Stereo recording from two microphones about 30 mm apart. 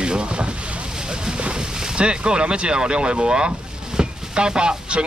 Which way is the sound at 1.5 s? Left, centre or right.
Right.